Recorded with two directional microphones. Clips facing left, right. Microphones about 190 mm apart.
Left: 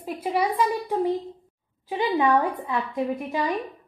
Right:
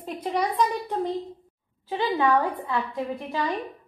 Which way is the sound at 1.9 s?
15° left (ahead or behind).